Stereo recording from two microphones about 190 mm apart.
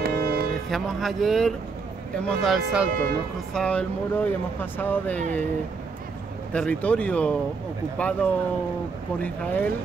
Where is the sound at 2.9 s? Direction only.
50° right (ahead or behind).